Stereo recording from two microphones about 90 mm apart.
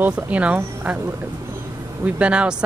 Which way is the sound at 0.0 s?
15° right (ahead or behind).